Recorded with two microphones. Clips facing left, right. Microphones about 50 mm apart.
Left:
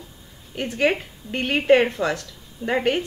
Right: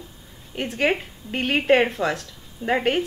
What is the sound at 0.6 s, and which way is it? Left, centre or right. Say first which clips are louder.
A woman's voice: left 1 dB; centre.